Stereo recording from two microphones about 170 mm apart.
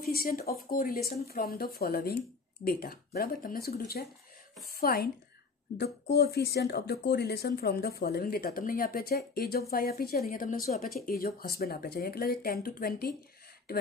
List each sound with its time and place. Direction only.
0.0 s speech: 60° left (ahead or behind)
5.8 s speech: 75° left (ahead or behind)